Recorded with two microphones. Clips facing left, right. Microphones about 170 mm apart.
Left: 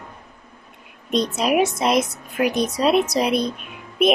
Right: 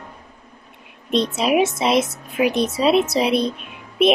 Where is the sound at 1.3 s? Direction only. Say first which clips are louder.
Even; centre (ahead or behind).